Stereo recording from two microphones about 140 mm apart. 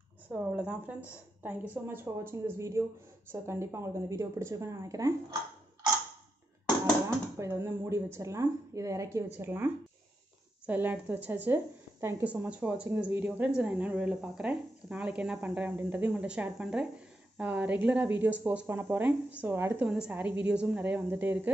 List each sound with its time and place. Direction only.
0.5 s a woman's voice: 10° right (ahead or behind)
7.3 s speech: 20° right (ahead or behind)
10.7 s a woman's voice: 15° right (ahead or behind)